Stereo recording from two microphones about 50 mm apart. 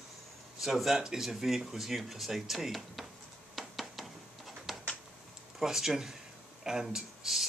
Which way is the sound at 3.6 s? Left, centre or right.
Centre.